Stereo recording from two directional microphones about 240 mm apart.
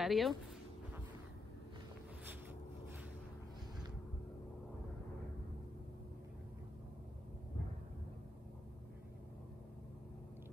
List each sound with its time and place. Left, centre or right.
0.0 s speech: centre